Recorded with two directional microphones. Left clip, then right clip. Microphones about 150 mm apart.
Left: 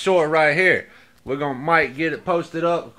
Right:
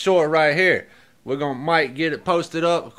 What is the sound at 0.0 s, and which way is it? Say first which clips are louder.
Speech: even; 20° right (ahead or behind).